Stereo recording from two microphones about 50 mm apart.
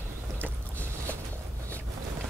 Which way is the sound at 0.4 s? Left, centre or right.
Left.